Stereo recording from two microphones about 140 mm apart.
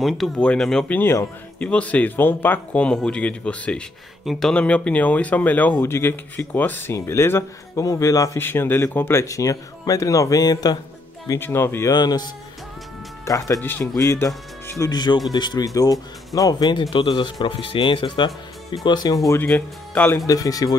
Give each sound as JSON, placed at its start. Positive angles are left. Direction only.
{"t": 0.0, "sound": "speech", "side_deg": 5}
{"t": 11.2, "sound": "speech", "side_deg": 15}
{"t": 11.9, "sound": "speech", "side_deg": 30}
{"t": 19.2, "sound": "speech", "side_deg": 15}
{"t": 20.2, "sound": "speech", "side_deg": 25}